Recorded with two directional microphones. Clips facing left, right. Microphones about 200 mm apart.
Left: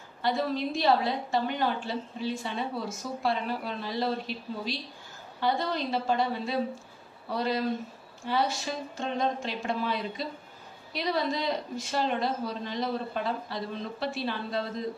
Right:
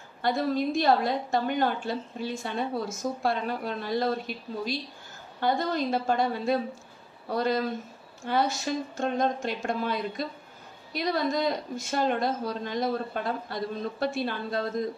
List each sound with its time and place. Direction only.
0.2 s a woman's voice: 50° right (ahead or behind)